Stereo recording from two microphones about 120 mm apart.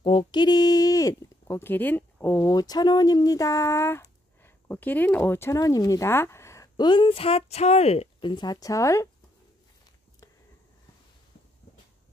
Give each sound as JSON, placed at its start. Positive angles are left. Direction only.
{"t": 0.0, "sound": "a sound", "side_deg": 45}
{"t": 1.6, "sound": "speech", "side_deg": 15}
{"t": 2.5, "sound": "speech", "side_deg": 35}
{"t": 6.8, "sound": "speech", "side_deg": 40}
{"t": 8.2, "sound": "speech", "side_deg": 40}